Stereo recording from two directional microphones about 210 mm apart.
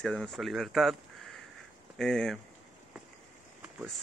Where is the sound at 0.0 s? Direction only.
5° left (ahead or behind).